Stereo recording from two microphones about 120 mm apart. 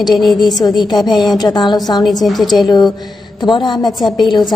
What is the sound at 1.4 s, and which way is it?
Speech, 35° left (ahead or behind).